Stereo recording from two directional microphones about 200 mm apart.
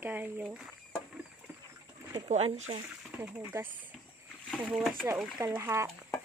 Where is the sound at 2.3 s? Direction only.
35° right (ahead or behind).